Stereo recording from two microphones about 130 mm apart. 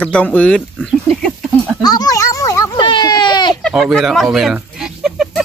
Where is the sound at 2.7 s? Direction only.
35° left (ahead or behind).